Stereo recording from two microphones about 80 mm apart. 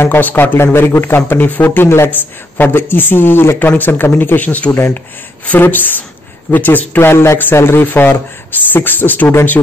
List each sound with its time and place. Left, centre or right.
0.0 s speech: left